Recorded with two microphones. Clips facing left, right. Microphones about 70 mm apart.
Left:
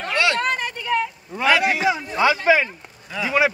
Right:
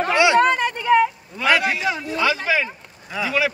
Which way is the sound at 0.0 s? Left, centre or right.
Centre.